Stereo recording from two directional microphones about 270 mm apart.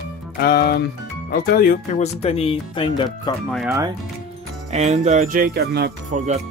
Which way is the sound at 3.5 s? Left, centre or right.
Centre.